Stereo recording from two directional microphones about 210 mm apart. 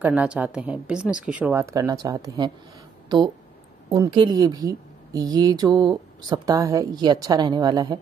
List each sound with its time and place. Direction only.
0.0 s a woman's voice: 5° right (ahead or behind)
3.9 s a woman's voice: 20° right (ahead or behind)